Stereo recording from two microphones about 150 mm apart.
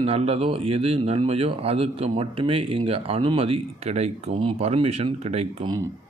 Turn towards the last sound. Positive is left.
turn(degrees=-45)  # may be behind; listen again after turning